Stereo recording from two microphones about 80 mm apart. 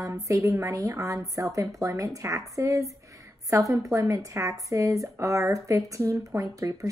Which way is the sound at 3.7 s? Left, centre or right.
Right.